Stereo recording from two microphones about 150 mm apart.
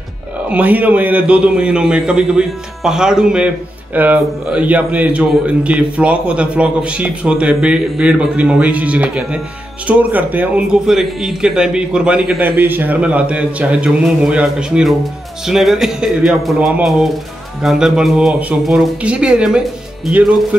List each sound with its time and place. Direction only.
0.5 s a man's voice: 10° right (ahead or behind)